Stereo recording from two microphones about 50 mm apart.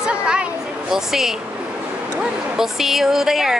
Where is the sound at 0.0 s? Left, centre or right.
Centre.